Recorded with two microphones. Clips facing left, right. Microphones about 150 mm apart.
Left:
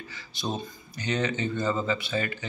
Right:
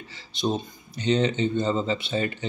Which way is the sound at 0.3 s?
20° right (ahead or behind).